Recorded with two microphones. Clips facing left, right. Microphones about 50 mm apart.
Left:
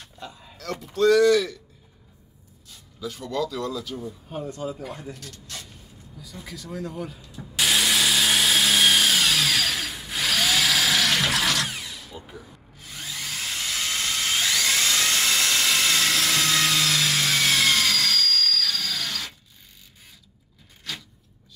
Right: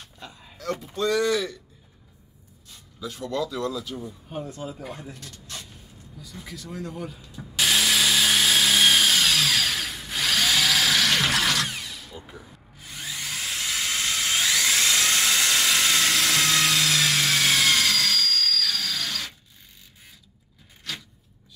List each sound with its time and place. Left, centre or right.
0.2 s a sound: centre
0.7 s speech: centre
3.0 s speech: centre
3.6 s speech: centre
5.1 s speech: right
5.7 s speech: centre
7.3 s tools: centre
12.2 s drill: centre